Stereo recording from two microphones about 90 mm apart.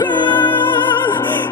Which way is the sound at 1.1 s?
25° left (ahead or behind).